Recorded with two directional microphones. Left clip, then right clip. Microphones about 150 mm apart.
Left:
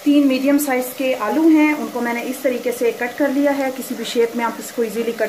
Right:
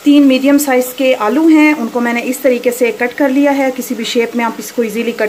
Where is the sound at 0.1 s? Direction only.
40° right (ahead or behind).